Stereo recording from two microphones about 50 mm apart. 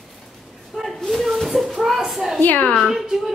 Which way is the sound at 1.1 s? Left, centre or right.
Centre.